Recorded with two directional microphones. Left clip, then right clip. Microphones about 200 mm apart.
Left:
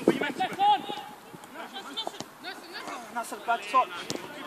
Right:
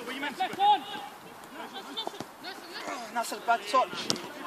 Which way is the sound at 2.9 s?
40° right (ahead or behind).